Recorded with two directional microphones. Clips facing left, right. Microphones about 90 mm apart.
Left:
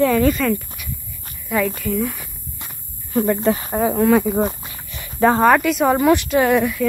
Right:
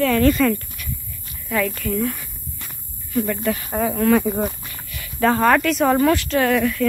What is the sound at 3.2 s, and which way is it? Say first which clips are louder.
Speech: left 5 dB; 30° left (ahead or behind).